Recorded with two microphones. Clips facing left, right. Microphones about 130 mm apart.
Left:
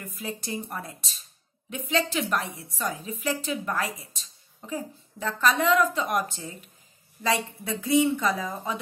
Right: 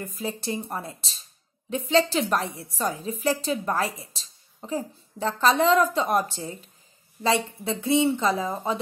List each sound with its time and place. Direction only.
0.0 s a woman's voice: 30° right (ahead or behind)